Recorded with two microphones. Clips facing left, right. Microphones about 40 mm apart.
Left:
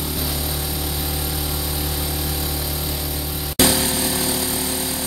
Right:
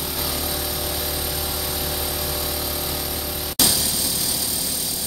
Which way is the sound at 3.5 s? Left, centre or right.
Left.